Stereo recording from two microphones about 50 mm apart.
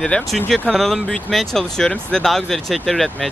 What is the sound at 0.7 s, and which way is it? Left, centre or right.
Speech, centre.